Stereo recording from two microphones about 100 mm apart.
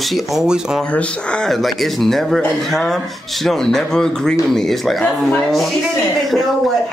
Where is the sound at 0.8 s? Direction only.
10° left (ahead or behind).